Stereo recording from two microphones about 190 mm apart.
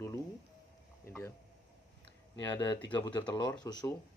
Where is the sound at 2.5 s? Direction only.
25° left (ahead or behind).